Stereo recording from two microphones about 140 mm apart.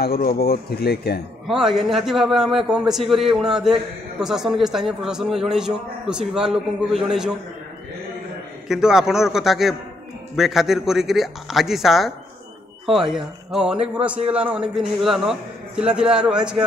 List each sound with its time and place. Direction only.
0.1 s speech: 90° left
1.5 s a man's voice: 5° right (ahead or behind)
8.6 s a man's voice: 5° right (ahead or behind)